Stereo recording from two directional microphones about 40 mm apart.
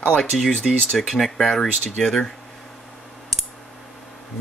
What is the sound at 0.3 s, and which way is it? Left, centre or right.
Speech, centre.